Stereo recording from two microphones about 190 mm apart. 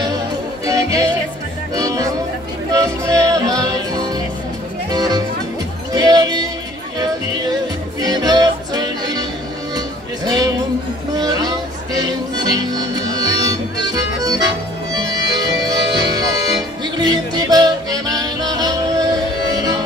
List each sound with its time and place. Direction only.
0.7 s music: 20° right (ahead or behind)
4.9 s music: 20° right (ahead or behind)
8.0 s music: 20° right (ahead or behind)
11.1 s a sound: 20° right (ahead or behind)
12.5 s music: 20° right (ahead or behind)